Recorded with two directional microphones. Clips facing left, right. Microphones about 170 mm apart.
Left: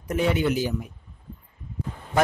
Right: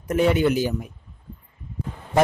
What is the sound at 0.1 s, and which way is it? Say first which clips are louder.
Speech: right 4 dB; 50° right (ahead or behind).